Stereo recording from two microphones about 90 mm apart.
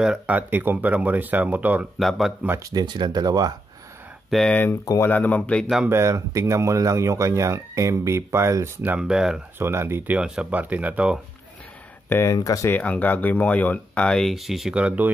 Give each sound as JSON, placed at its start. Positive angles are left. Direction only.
{"t": 0.0, "sound": "speech", "side_deg": -10}
{"t": 0.4, "sound": "speech", "side_deg": -20}
{"t": 2.0, "sound": "speech", "side_deg": 0}
{"t": 2.6, "sound": "speech", "side_deg": -50}
{"t": 4.3, "sound": "speech", "side_deg": 0}
{"t": 5.0, "sound": "speech", "side_deg": 20}
{"t": 5.9, "sound": "speech", "side_deg": -30}
{"t": 8.8, "sound": "speech", "side_deg": -10}
{"t": 9.6, "sound": "speech", "side_deg": -30}
{"t": 10.1, "sound": "speech", "side_deg": -10}
{"t": 12.1, "sound": "speech", "side_deg": 20}
{"t": 14.0, "sound": "speech", "side_deg": 5}